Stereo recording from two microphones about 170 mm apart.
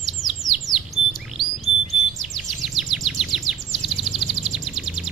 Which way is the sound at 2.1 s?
Centre (ahead or behind).